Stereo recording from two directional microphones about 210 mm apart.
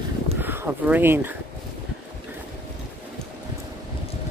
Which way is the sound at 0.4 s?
10° right (ahead or behind).